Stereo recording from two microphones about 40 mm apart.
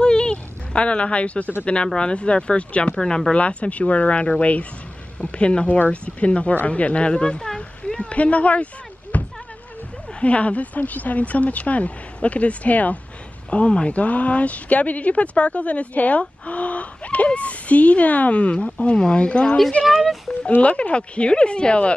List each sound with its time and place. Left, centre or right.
0.0 s a sound: left
2.0 s speech: left
3.0 s speech: centre
5.7 s speech: left
7.4 s a sound: centre
8.0 s speech: left
9.1 s a sound: left
10.2 s speech: left
13.5 s speech: left
13.9 s speech: left
19.8 s speech: centre
20.3 s speech: left
20.6 s speech: left